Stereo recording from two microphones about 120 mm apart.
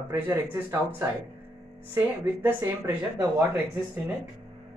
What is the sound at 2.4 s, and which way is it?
Speech, 15° right (ahead or behind).